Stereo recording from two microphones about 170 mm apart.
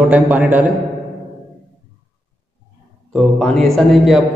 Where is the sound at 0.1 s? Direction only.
10° right (ahead or behind).